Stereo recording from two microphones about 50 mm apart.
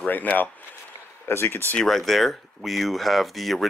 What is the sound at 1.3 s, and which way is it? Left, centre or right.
Speech, left.